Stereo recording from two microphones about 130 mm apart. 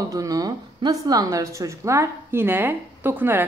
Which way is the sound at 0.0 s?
25° right (ahead or behind).